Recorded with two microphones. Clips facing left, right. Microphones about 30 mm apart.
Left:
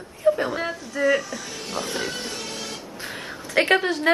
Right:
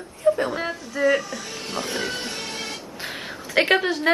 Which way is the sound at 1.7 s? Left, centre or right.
Right.